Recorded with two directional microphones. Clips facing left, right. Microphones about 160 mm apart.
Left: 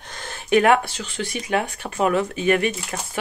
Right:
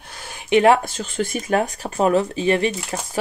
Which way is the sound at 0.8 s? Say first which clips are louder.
Right 5 dB; 45° right (ahead or behind).